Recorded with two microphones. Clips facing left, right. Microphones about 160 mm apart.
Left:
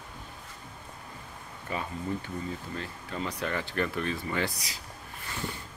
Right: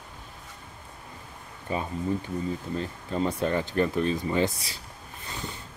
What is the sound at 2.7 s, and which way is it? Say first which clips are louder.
Speech: right 7 dB; 30° right (ahead or behind).